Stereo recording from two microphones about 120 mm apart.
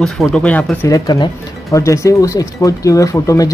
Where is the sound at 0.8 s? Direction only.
30° left (ahead or behind).